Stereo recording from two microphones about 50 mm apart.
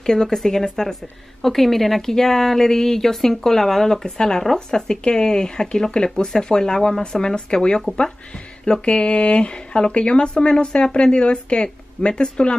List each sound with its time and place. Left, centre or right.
0.0 s speech: centre